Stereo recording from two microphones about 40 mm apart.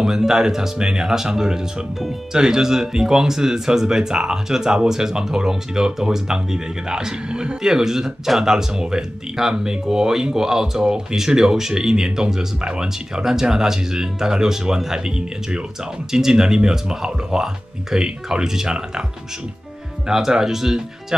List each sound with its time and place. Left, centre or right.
0.0 s speech: centre
20.1 s speech: centre